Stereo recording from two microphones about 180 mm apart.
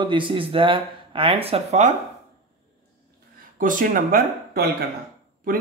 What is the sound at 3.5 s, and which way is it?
Speech, 50° right (ahead or behind).